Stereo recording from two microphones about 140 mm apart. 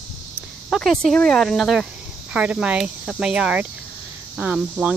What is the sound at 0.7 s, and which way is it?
Speech, centre (ahead or behind).